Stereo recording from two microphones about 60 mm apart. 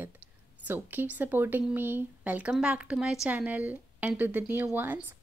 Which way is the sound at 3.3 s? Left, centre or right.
Right.